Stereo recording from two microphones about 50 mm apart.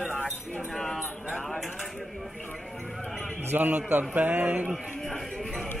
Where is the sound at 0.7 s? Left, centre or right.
Centre.